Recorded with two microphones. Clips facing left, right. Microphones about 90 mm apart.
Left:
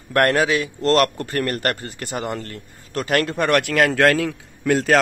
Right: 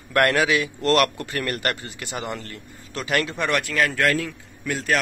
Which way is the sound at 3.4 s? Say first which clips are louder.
Left 7 dB; 60° left (ahead or behind).